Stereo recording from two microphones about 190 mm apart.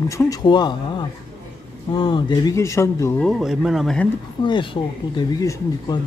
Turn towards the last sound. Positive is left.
turn(degrees=20)  # may be behind; listen again after turning